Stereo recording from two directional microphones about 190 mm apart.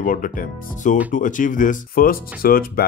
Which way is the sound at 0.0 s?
45° left (ahead or behind).